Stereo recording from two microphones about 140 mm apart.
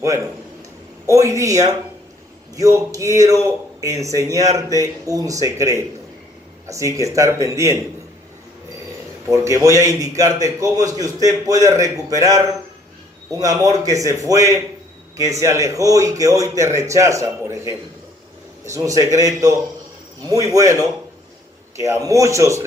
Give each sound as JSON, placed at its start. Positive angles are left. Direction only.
{"t": 1.0, "sound": "a man's voice", "side_deg": -20}
{"t": 9.3, "sound": "a man's voice", "side_deg": -20}